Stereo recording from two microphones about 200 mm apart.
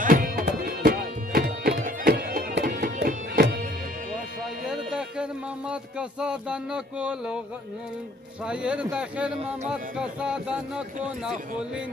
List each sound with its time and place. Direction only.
0.0 s tabla: 45° right (ahead or behind)
1.9 s music: 45° right (ahead or behind)
4.9 s a sound: 5° right (ahead or behind)
8.5 s speech: 5° right (ahead or behind)